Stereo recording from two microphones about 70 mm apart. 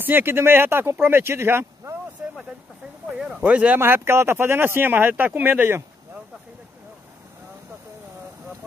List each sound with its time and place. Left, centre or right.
0.0 s speech: right
3.2 s speech: centre
3.4 s speech: centre
3.8 s speech: right